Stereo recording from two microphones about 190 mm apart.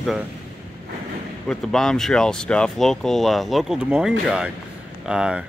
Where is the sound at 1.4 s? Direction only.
Centre (ahead or behind).